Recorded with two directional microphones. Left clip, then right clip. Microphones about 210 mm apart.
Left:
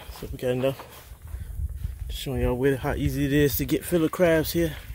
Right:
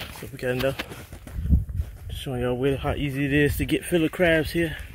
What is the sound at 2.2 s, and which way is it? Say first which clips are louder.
Speech: even; 10° left (ahead or behind).